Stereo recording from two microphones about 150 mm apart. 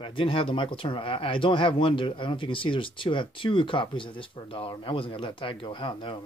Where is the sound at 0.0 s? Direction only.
35° left (ahead or behind).